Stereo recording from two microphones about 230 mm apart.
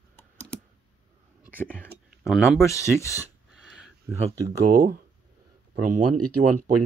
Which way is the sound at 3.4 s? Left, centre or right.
Centre.